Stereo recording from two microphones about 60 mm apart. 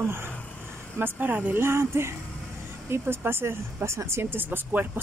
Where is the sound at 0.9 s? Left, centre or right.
Right.